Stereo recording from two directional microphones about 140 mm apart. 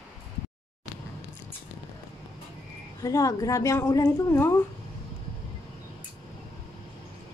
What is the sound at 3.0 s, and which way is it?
A woman's voice, 25° left (ahead or behind).